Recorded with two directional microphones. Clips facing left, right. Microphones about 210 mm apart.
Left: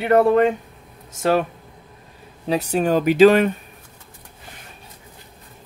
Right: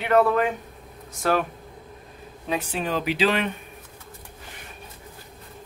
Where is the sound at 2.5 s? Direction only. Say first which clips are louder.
Left 8 dB; 40° left (ahead or behind).